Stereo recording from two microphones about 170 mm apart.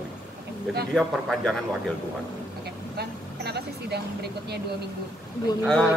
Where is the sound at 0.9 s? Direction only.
Centre (ahead or behind).